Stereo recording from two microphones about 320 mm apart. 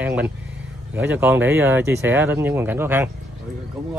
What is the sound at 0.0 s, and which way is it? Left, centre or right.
Vehicle, centre.